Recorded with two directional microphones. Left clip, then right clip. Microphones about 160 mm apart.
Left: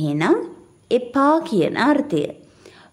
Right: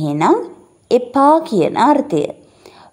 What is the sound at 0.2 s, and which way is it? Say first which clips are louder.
A woman's voice: right 6 dB; 25° left (ahead or behind).